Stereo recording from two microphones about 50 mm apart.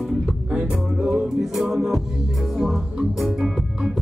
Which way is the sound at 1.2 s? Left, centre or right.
Centre.